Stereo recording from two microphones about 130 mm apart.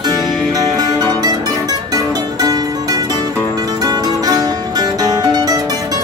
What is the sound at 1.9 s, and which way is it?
Music, 30° right (ahead or behind).